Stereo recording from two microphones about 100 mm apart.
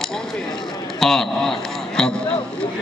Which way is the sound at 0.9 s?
5° left (ahead or behind).